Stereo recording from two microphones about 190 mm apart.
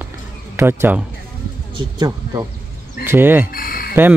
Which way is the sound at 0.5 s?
10° right (ahead or behind).